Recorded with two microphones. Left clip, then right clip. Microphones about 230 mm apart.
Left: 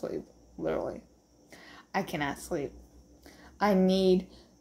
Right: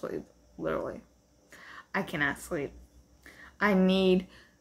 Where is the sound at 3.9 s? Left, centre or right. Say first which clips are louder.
Even; right.